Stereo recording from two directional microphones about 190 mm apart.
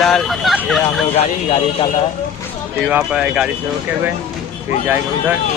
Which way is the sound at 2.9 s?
5° right (ahead or behind).